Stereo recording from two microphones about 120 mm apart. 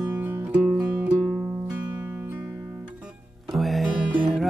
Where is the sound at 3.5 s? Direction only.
Centre (ahead or behind).